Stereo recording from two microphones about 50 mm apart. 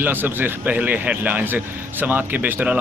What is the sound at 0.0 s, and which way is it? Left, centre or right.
Speech, right.